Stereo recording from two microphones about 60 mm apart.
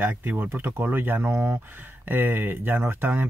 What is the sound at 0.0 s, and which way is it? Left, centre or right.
Speech, right.